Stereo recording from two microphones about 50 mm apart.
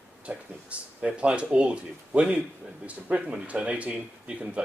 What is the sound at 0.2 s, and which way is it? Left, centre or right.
Speech, right.